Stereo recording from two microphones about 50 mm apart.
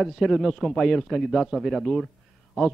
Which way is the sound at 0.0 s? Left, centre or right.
Centre.